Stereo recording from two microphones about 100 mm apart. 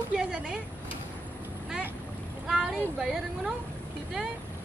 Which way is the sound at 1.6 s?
10° right (ahead or behind).